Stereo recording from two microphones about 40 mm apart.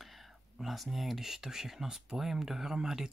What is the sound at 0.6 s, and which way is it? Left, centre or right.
Speech, centre.